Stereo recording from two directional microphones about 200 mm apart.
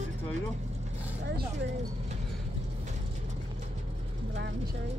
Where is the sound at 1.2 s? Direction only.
60° right (ahead or behind).